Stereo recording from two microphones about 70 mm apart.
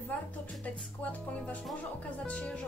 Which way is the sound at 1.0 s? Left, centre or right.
Centre.